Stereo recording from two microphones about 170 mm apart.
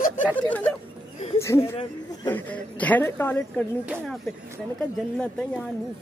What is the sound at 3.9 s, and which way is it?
Speech, centre (ahead or behind).